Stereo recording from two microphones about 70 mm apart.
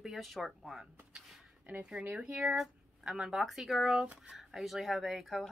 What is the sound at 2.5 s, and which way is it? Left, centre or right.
Speech, centre.